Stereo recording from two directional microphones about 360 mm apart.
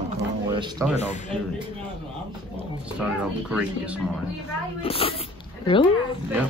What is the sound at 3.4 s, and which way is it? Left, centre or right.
Speech, centre.